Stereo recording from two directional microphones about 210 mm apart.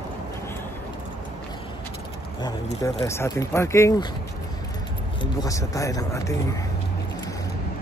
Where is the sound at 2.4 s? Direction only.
15° left (ahead or behind).